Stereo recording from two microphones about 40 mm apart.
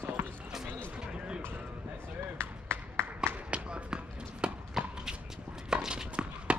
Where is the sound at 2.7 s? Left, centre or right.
Right.